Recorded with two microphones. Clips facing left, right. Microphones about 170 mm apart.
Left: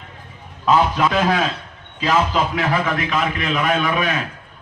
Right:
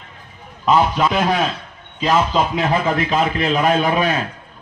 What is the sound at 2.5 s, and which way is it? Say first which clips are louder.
A man's voice: right 2 dB; 25° right (ahead or behind).